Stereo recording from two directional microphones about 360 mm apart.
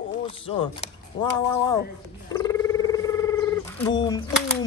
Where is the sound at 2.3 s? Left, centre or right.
Centre.